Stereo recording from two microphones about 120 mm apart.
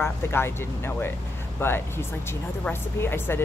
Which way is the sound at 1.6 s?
20° left (ahead or behind).